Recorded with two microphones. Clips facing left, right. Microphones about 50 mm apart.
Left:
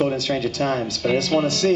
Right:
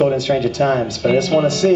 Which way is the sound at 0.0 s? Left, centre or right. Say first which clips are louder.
Right 6 dB; centre.